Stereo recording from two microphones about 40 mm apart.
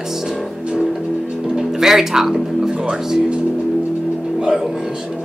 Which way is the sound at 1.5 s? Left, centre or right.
Centre.